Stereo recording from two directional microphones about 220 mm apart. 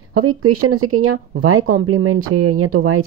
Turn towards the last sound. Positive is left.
turn(degrees=-85)